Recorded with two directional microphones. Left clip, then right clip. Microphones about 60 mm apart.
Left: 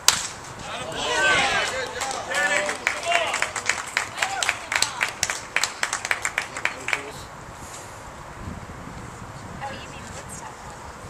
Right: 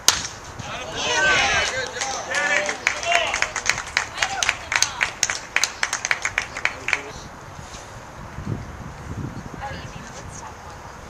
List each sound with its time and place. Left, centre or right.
0.9 s run: right
4.1 s applause: right
4.4 s applause: right
4.8 s clapping: right